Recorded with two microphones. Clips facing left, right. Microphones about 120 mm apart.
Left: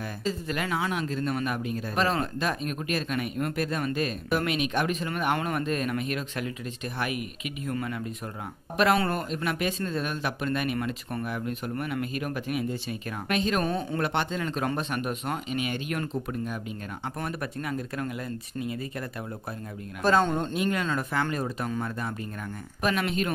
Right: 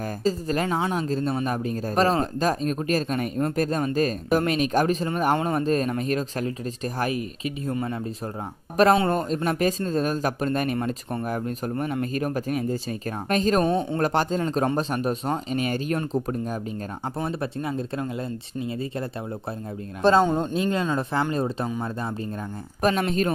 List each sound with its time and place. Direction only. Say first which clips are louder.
0.2 s speech: right 6 dB; 35° right (ahead or behind)
20.2 s speech: right 4 dB; 15° right (ahead or behind)
20.5 s speech: right 3 dB; 25° right (ahead or behind)
22.8 s speech: right 5 dB; 35° right (ahead or behind)